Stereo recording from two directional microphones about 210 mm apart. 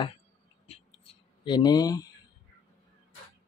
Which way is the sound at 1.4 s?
20° left (ahead or behind).